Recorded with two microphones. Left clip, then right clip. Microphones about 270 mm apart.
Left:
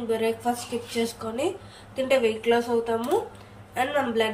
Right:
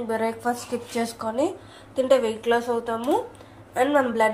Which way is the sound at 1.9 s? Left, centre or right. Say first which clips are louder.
Right 2 dB; centre.